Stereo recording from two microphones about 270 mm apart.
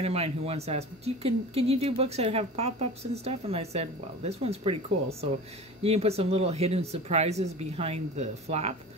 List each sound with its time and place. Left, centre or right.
0.0 s a woman's voice: right
5.8 s a woman's voice: right